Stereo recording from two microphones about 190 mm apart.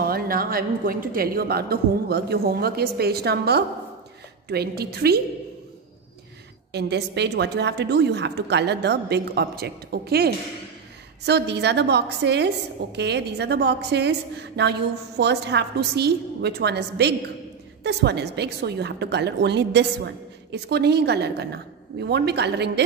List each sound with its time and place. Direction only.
0.0 s a woman's voice: 50° right (ahead or behind)
6.7 s a woman's voice: 60° right (ahead or behind)